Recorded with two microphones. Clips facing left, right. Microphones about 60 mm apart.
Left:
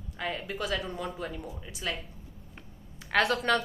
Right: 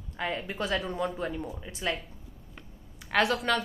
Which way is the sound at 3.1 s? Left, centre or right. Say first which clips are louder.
Even; centre.